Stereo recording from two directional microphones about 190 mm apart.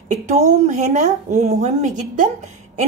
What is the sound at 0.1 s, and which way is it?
A woman's voice, 40° right (ahead or behind).